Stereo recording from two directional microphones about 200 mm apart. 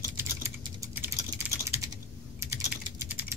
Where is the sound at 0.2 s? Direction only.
10° right (ahead or behind).